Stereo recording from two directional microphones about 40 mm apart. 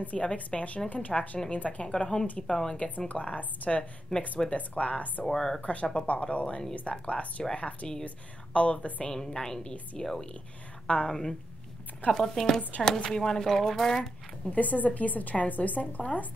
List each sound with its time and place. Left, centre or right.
0.0 s a woman's voice: left
2.4 s speech: centre
3.1 s a woman's voice: left
4.1 s speech: centre
4.5 s a woman's voice: left
5.2 s speech: centre
5.6 s a woman's voice: left
9.1 s speech: centre
14.5 s a woman's voice: left